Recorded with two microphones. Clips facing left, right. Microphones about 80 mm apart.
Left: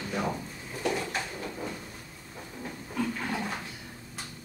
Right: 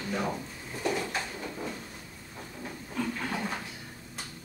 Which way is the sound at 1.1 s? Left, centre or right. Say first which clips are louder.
Even; centre.